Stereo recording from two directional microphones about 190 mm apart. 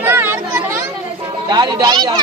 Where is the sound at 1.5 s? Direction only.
20° right (ahead or behind).